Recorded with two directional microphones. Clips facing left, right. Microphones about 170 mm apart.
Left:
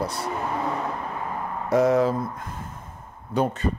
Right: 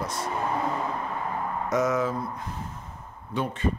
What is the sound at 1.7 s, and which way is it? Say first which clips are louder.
Speech: left 6 dB; 35° left (ahead or behind).